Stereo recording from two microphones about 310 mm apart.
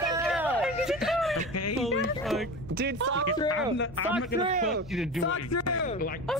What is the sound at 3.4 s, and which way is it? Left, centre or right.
Speech, left.